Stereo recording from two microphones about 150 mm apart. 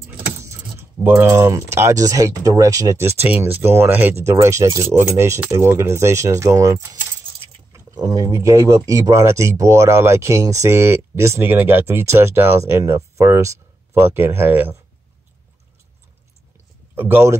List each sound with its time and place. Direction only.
0.7 s speech: 15° right (ahead or behind)
16.9 s speech: 15° right (ahead or behind)